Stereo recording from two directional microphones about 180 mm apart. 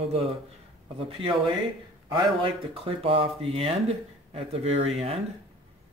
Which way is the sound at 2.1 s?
30° right (ahead or behind).